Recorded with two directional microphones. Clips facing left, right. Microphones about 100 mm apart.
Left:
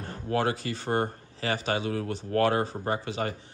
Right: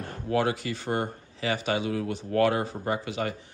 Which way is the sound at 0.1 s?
35° left (ahead or behind).